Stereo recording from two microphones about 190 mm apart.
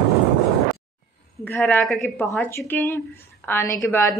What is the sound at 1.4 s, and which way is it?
Speech, 10° left (ahead or behind).